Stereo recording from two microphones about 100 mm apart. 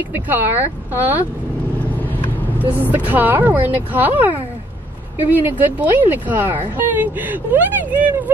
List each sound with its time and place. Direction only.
0.1 s speech: 20° right (ahead or behind)
2.6 s speech: 20° right (ahead or behind)
5.3 s speech: 15° right (ahead or behind)